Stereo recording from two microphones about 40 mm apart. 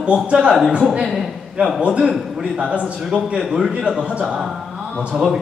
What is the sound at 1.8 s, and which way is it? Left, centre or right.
A man's voice, right.